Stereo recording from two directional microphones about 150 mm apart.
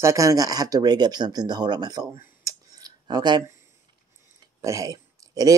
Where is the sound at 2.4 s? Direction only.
25° right (ahead or behind).